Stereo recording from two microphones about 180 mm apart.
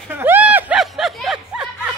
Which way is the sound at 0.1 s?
10° right (ahead or behind).